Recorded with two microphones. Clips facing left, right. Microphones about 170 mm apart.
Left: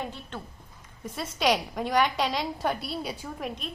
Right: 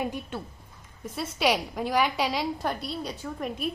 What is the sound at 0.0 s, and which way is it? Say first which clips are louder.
A woman's voice: right 5 dB; 10° right (ahead or behind).